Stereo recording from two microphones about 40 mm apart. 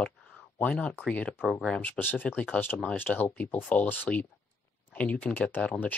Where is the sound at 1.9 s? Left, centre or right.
Left.